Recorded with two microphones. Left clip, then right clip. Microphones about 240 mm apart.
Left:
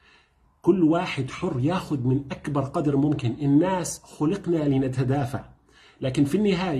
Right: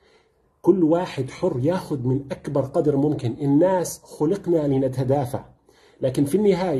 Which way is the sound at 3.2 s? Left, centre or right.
Centre.